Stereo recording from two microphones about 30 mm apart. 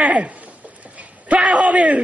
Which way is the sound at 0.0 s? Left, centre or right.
Right.